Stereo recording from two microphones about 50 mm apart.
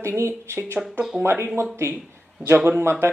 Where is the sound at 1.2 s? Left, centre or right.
Right.